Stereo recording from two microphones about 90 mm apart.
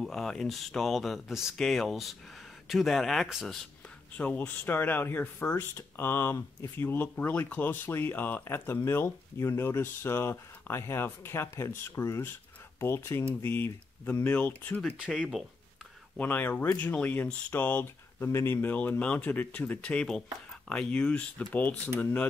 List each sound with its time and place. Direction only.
0.0 s speech: 5° left (ahead or behind)
4.2 s speech: 15° left (ahead or behind)
7.2 s speech: 15° left (ahead or behind)
15.0 s speech: 10° right (ahead or behind)
16.2 s speech: 20° left (ahead or behind)